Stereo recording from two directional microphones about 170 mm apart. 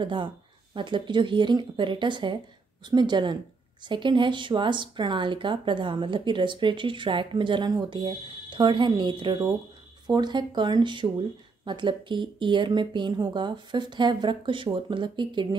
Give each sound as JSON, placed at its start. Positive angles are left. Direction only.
{"t": 0.0, "sound": "speech", "side_deg": -30}